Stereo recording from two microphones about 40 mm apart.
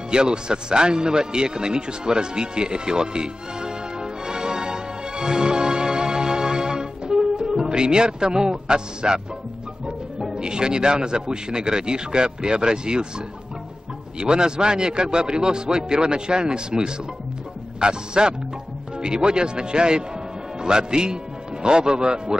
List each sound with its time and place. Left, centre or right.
0.1 s music: right
9.8 s a man's voice: right
14.2 s a man's voice: right